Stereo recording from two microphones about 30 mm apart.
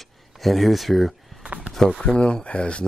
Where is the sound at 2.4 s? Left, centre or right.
Left.